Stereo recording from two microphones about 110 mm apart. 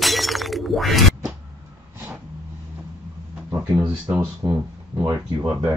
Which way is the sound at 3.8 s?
10° right (ahead or behind).